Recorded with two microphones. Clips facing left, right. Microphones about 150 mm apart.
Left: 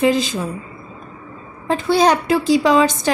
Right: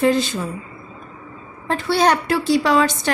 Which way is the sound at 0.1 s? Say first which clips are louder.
Left 1 dB; 90° left.